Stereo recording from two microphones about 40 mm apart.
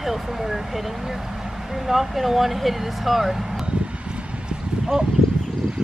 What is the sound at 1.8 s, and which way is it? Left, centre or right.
Speech, centre.